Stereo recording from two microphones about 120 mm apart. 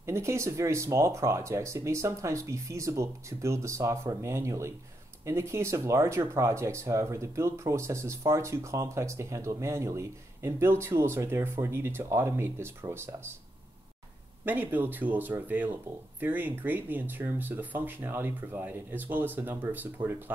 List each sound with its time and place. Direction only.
0.0 s speech: 25° right (ahead or behind)
14.4 s speech: 15° right (ahead or behind)